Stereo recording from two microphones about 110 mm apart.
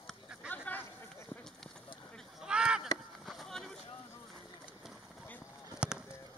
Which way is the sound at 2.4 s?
10° right (ahead or behind).